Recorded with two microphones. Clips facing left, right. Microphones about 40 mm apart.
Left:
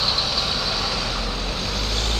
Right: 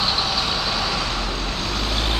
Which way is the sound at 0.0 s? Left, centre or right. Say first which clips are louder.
Right 2 dB; centre.